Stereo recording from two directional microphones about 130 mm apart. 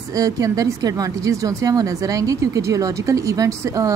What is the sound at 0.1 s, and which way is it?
Speech, 25° right (ahead or behind).